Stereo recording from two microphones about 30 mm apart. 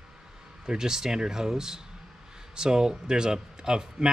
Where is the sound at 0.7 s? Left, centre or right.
Centre.